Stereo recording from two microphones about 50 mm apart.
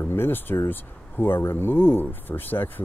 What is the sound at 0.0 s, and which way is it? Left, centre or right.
Speech, left.